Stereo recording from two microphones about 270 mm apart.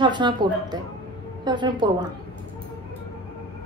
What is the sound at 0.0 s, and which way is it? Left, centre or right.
Speech, centre.